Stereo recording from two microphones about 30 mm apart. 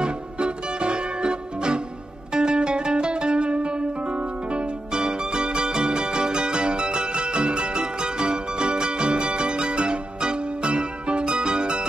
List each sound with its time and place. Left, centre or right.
0.0 s music: right